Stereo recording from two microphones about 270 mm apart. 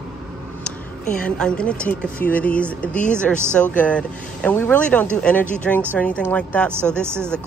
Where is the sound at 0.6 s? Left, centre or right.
Centre.